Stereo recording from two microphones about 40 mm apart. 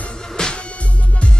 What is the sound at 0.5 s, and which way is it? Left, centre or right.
Music, left.